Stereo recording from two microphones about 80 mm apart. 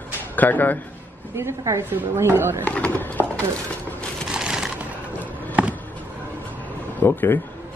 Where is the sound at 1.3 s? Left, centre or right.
Right.